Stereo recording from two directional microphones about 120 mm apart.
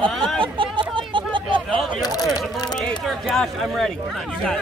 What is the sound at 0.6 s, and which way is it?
Chatter, 45° right (ahead or behind).